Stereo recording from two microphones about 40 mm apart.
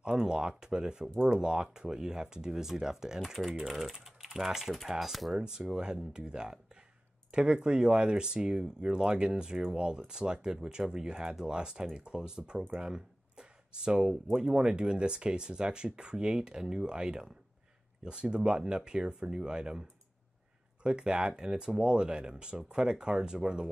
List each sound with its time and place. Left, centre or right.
0.2 s speech: right
4.8 s cutlery: centre
5.7 s speech: centre
20.8 s speech: right